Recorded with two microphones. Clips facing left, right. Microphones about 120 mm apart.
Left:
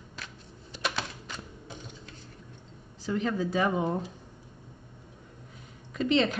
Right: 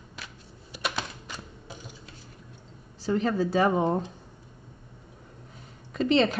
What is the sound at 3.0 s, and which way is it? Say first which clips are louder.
A woman's voice: right 4 dB; 40° right (ahead or behind).